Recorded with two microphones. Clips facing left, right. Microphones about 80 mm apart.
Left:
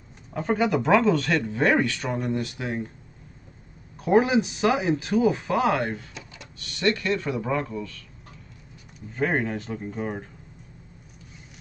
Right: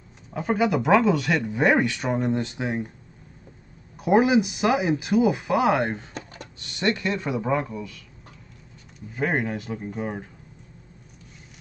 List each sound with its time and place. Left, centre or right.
0.3 s speech: centre
4.0 s speech: centre
6.1 s a sound: right
6.6 s speech: right
9.1 s speech: centre